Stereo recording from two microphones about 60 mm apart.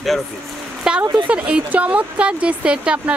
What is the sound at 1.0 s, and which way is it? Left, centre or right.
Speech, right.